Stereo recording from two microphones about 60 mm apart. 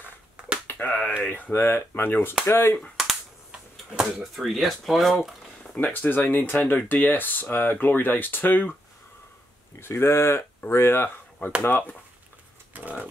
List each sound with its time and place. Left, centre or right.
0.7 s speech: left
3.9 s speech: centre
4.4 s speech: centre
5.8 s speech: left
9.8 s speech: left
12.7 s a sound: right